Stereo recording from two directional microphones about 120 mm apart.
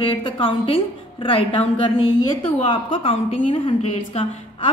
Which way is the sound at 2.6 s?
50° left (ahead or behind).